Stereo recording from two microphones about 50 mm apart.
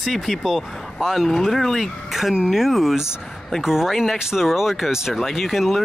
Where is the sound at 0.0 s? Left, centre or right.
Centre.